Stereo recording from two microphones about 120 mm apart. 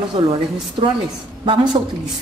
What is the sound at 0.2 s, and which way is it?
A woman's voice, 50° right (ahead or behind).